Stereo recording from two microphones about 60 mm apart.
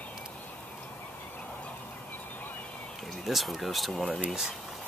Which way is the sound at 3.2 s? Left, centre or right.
Centre.